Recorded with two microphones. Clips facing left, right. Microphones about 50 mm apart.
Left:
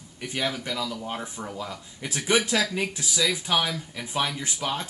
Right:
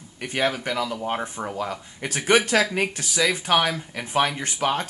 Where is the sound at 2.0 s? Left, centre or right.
Right.